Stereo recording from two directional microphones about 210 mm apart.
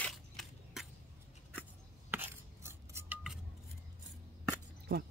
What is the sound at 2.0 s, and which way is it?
Scissors, 10° right (ahead or behind).